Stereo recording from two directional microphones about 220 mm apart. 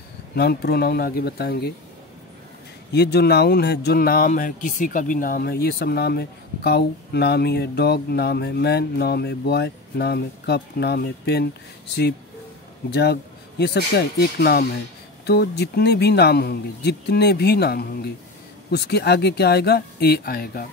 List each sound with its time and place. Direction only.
0.4 s speech: 45° left (ahead or behind)
2.9 s speech: 50° left (ahead or behind)